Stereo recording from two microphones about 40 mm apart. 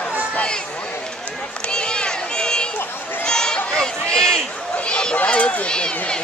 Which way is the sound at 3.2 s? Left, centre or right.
Centre.